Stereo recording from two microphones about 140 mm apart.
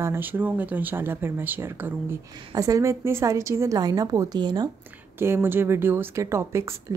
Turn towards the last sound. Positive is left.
turn(degrees=-20)  # may be behind; listen again after turning